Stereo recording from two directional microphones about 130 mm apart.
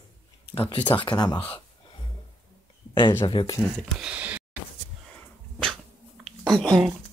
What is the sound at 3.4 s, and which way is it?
Speech, 40° left (ahead or behind).